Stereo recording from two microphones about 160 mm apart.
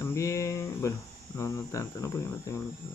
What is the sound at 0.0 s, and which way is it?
Speech, 20° left (ahead or behind).